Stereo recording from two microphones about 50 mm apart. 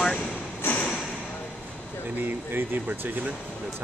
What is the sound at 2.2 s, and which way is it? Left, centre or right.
Speech, right.